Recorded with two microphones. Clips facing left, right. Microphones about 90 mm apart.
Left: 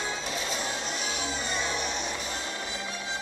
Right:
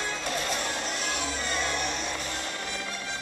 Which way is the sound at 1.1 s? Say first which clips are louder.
Right 1 dB; 55° right (ahead or behind).